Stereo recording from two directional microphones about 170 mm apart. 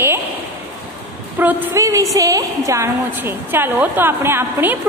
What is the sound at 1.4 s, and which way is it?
A woman's voice, 10° right (ahead or behind).